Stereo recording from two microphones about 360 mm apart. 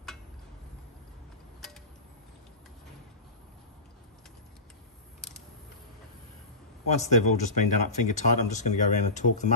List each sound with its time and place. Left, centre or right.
6.9 s speech: centre